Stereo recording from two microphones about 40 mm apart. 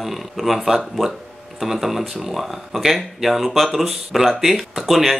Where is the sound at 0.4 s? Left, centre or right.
Centre.